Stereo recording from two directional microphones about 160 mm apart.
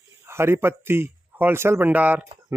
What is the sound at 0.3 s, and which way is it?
Speech, 15° right (ahead or behind).